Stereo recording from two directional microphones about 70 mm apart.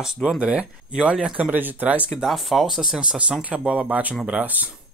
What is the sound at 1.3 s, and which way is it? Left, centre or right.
Speech, right.